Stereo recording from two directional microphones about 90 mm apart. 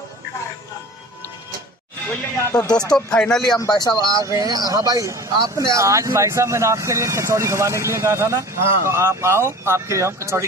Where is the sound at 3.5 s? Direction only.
45° left (ahead or behind).